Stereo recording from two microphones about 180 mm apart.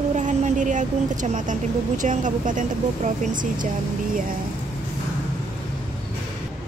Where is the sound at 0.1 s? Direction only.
40° right (ahead or behind).